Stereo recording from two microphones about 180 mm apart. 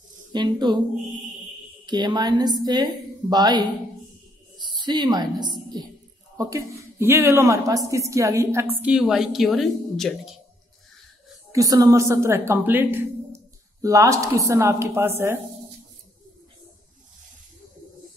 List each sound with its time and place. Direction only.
0.3 s a woman's voice: 25° right (ahead or behind)
1.9 s a woman's voice: 25° right (ahead or behind); by 10.3 s centre (ahead or behind)
11.5 s speech: 20° right (ahead or behind)